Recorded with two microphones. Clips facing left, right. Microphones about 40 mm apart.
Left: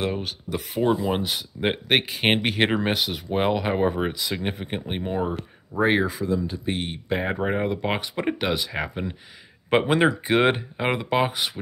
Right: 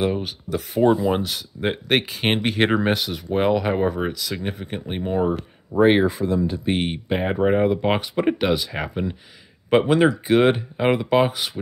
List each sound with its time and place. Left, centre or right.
0.0 s speech: centre
1.1 s speech: centre
4.1 s speech: left
5.0 s speech: centre
5.7 s speech: right
6.0 s speech: right
6.3 s speech: right
7.1 s speech: centre